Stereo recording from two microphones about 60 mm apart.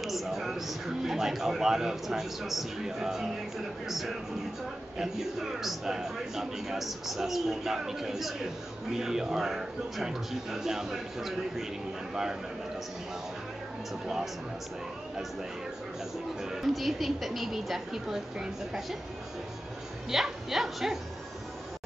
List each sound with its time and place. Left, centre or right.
0.0 s a man's voice: centre
4.9 s a man's voice: centre
14.0 s a man's voice: centre
16.4 s a man's voice: centre
20.1 s a man's voice: centre